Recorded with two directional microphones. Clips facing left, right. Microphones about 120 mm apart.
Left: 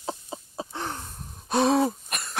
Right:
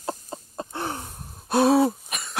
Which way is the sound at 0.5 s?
5° right (ahead or behind).